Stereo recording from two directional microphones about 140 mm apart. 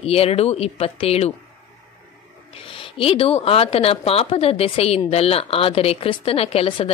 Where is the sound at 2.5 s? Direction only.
40° left (ahead or behind).